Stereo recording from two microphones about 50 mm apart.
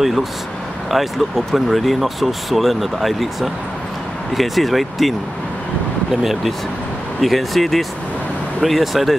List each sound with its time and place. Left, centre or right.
0.0 s speech: centre
7.2 s speech: centre